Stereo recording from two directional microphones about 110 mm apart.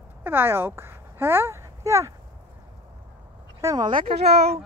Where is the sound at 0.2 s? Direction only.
20° right (ahead or behind).